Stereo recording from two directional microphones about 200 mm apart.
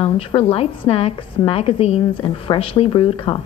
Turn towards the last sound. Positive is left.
turn(degrees=25)  # may be behind; listen again after turning